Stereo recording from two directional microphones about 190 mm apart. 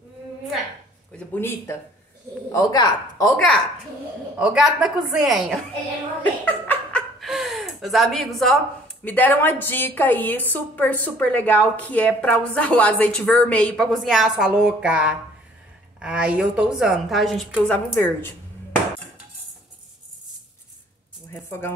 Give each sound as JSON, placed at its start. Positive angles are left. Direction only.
{"t": 1.1, "sound": "speech", "side_deg": 10}
{"t": 2.5, "sound": "speech", "side_deg": 20}
{"t": 4.4, "sound": "a woman's voice", "side_deg": -5}
{"t": 17.6, "sound": "speech", "side_deg": 10}
{"t": 21.3, "sound": "speech", "side_deg": 10}